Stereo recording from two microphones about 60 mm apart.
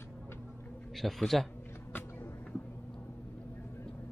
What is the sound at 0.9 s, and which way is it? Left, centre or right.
Speech, centre.